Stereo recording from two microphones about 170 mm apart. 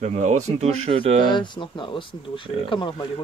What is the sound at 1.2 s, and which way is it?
Speech, 25° left (ahead or behind).